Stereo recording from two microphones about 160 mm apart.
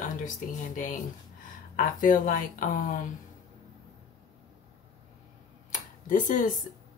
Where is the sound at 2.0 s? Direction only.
55° left (ahead or behind).